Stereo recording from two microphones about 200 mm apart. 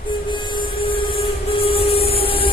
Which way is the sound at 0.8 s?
25° left (ahead or behind).